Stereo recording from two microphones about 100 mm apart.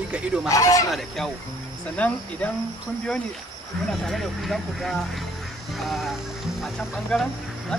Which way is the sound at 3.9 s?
5° left (ahead or behind).